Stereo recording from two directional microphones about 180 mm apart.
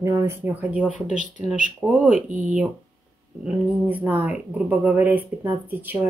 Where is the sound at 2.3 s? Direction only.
45° right (ahead or behind).